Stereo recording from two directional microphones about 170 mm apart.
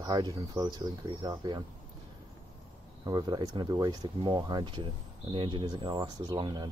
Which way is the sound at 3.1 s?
25° right (ahead or behind).